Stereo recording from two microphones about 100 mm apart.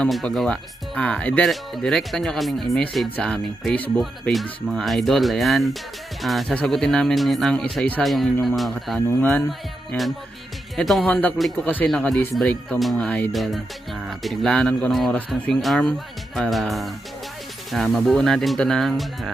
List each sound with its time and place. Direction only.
0.1 s speech: centre (ahead or behind)
4.3 s speech: centre (ahead or behind)
8.0 s speech: centre (ahead or behind)
11.1 s speech: 15° left (ahead or behind)
11.3 s speech: centre (ahead or behind)
11.6 s speech: 15° left (ahead or behind)
12.6 s speech: centre (ahead or behind)
13.3 s speech: centre (ahead or behind)